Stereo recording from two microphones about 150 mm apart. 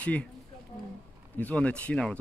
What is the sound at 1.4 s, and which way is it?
Speech, 10° left (ahead or behind).